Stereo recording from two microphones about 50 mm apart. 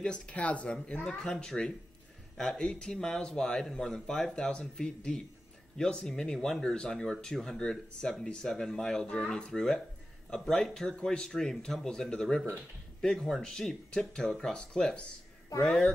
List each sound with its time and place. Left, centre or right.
0.0 s speech: left
1.0 s speech: centre